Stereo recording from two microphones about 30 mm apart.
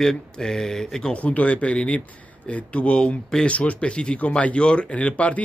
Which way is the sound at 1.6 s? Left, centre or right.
Left.